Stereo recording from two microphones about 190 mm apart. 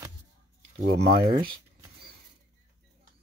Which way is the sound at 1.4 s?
25° right (ahead or behind).